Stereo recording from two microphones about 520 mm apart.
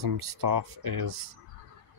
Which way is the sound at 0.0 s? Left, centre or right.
Right.